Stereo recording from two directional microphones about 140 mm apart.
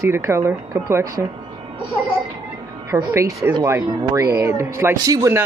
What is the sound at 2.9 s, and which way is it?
Speech, 15° right (ahead or behind).